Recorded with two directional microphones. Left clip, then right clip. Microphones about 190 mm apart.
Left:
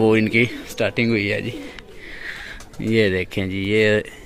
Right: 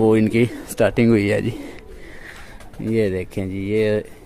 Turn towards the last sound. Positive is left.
turn(degrees=0)  # may be behind; listen again after turning